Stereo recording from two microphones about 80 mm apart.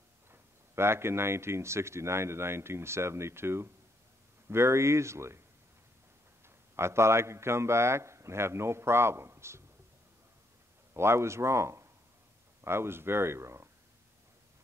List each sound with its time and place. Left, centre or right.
0.3 s speech: right
6.4 s a man's voice: right
10.9 s a man's voice: right